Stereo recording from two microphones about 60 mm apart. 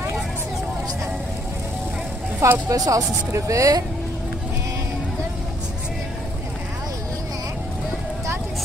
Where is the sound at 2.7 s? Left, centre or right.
Right.